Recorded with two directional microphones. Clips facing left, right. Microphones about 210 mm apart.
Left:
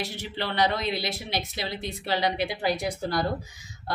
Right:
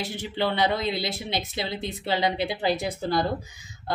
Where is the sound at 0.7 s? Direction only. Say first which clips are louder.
Right 2 dB; 20° right (ahead or behind).